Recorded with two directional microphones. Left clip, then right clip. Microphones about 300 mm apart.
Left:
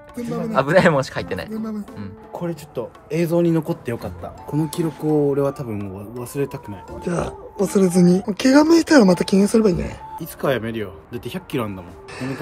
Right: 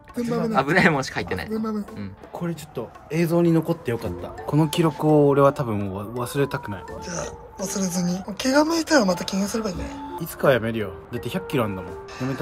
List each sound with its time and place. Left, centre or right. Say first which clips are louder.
0.2 s speech: left 1 dB; centre
5.0 s speech: right 1 dB; right
5.4 s speech: right 4 dB; centre
7.1 s speech: left 9 dB; centre
10.2 s speech: right 2 dB; centre